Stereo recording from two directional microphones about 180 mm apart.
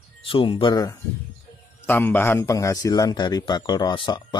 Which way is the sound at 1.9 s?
10° left (ahead or behind).